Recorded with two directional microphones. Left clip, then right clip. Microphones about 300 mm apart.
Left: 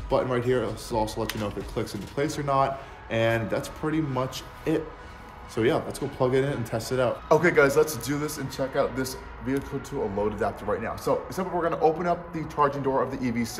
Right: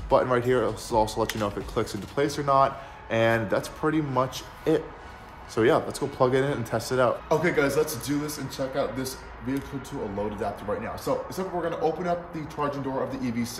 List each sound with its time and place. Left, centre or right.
0.1 s speech: centre
7.2 s speech: centre
10.7 s speech: centre